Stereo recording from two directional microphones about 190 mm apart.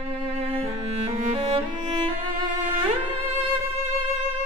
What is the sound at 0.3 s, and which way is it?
Music, 35° right (ahead or behind).